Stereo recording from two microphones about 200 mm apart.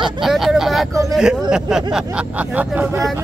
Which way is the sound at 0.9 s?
15° right (ahead or behind).